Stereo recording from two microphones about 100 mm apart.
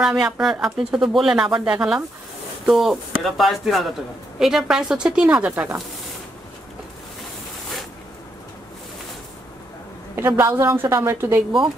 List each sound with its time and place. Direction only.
0.0 s a woman's voice: 5° right (ahead or behind)
10.1 s a woman's voice: 20° right (ahead or behind)